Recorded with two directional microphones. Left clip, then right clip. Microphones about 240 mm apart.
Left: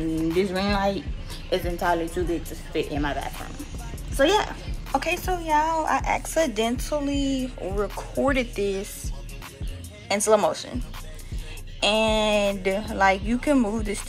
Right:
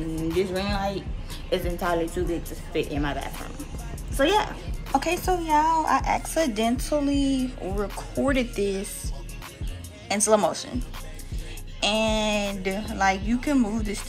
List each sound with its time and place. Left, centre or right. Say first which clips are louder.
0.4 s speech: left 1 dB; left
1.5 s a woman's voice: left 2 dB; centre
10.0 s a woman's voice: left 1 dB; centre
11.8 s speech: left 3 dB; centre